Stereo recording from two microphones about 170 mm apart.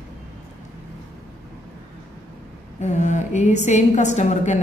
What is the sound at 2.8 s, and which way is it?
A woman's voice, 45° left (ahead or behind).